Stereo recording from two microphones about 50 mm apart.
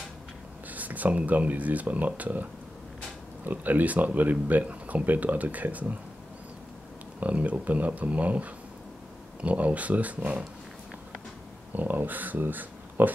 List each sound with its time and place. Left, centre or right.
0.7 s speech: right
3.4 s speech: right
7.2 s speech: right
11.7 s speech: right